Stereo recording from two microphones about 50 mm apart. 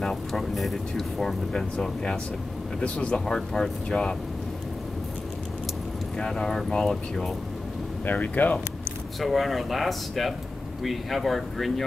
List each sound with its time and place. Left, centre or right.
0.0 s speech: centre
2.8 s speech: left
3.3 s speech: centre
6.1 s speech: centre
8.0 s speech: left
9.2 s speech: centre